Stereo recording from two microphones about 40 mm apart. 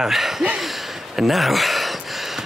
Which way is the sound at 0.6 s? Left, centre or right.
Centre.